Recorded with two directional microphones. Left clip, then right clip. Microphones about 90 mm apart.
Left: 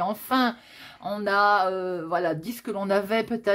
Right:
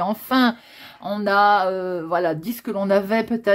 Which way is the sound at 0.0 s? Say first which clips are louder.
Right 4 dB; 30° right (ahead or behind).